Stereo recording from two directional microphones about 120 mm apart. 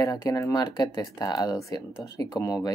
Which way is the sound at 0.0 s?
30° left (ahead or behind).